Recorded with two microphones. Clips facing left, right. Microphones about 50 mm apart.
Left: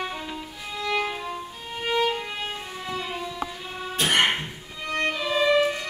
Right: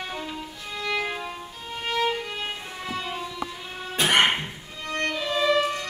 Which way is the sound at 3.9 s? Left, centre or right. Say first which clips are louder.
Right 2 dB; right.